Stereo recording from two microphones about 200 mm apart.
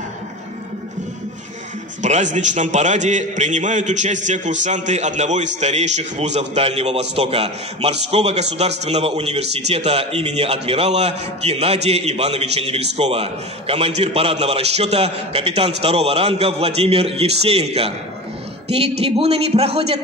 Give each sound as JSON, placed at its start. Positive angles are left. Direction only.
{"t": 2.0, "sound": "a man's voice", "side_deg": -35}